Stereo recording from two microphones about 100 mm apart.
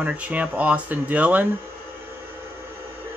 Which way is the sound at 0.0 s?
15° right (ahead or behind).